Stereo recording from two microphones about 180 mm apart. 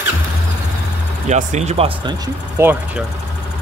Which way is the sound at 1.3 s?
40° right (ahead or behind).